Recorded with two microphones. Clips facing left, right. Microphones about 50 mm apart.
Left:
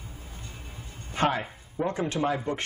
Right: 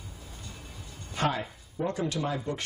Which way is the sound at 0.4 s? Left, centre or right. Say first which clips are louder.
Left 1 dB; left.